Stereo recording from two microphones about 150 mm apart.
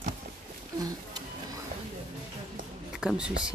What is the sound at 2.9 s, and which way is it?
Speech, 5° right (ahead or behind).